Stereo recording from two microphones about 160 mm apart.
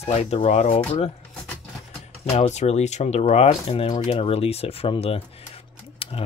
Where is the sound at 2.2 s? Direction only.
45° left (ahead or behind).